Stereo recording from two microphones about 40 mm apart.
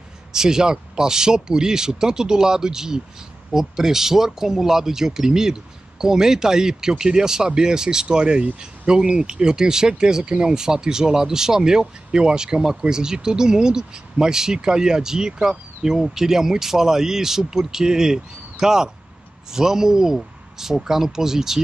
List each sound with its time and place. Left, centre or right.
0.3 s speech: centre